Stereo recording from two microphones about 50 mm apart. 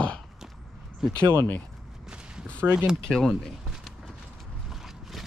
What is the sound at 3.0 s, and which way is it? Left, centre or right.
Speech, centre.